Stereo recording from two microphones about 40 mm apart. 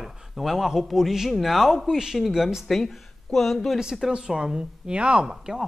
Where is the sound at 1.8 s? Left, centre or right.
Centre.